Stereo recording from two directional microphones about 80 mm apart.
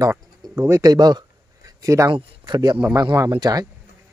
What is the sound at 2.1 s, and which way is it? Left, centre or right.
Speech, right.